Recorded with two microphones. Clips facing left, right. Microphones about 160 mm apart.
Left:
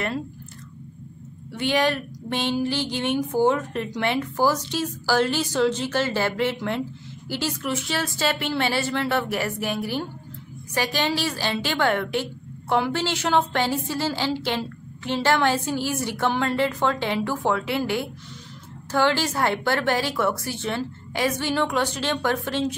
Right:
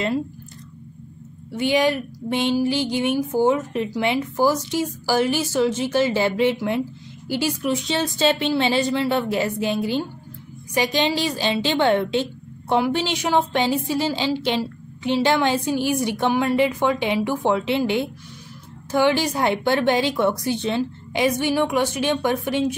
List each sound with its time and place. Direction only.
1.5 s a woman's voice: 10° right (ahead or behind)